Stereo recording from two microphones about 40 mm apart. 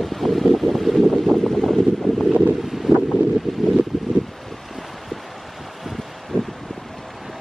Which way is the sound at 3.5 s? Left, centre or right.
Centre.